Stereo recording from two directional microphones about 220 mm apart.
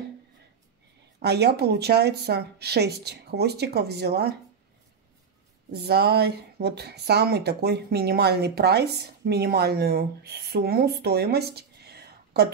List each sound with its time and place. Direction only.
1.2 s speech: 50° right (ahead or behind)
5.7 s speech: 50° right (ahead or behind)